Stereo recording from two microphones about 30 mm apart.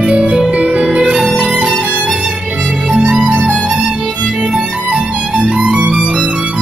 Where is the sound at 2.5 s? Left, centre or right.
Right.